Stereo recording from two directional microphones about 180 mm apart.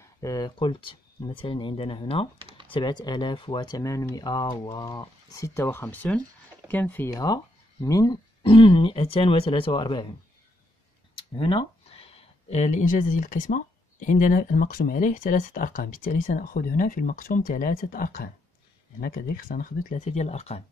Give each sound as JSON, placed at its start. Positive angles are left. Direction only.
{"t": 0.2, "sound": "speech", "side_deg": 20}
{"t": 11.3, "sound": "speech", "side_deg": 30}